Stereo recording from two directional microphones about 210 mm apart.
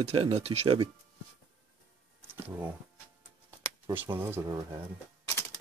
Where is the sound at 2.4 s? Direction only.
10° right (ahead or behind).